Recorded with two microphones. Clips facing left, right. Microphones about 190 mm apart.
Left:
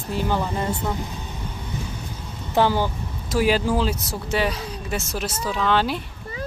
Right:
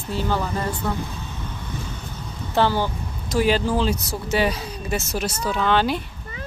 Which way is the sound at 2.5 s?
15° left (ahead or behind).